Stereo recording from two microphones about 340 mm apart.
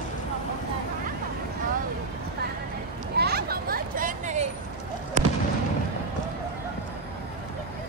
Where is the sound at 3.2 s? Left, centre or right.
Right.